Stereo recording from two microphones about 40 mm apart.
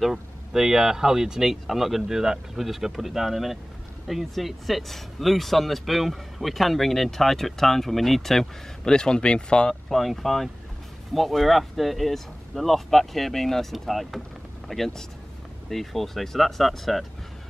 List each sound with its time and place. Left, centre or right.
0.0 s speech: centre
8.8 s speech: centre
9.7 s speech: centre